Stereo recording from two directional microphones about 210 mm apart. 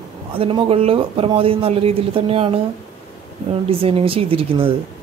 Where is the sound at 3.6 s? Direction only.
25° right (ahead or behind).